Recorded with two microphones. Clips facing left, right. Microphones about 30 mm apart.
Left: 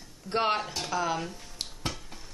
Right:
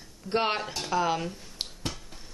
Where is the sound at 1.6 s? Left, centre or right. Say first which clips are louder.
Right 2 dB; centre.